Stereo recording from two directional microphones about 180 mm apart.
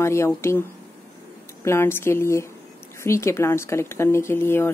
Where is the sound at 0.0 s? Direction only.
15° left (ahead or behind).